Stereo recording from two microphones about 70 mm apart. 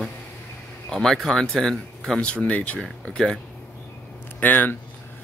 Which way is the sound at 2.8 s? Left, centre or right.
Centre.